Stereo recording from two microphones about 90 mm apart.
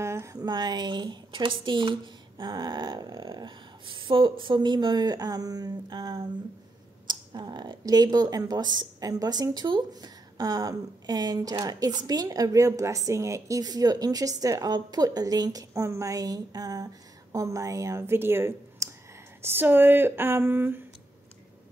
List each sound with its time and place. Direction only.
0.0 s a sound: 30° right (ahead or behind)
0.4 s speech: 50° right (ahead or behind)
15.7 s a woman's voice: 35° right (ahead or behind)